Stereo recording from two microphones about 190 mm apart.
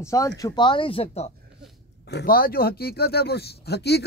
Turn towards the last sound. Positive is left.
turn(degrees=60)  # may be behind; listen again after turning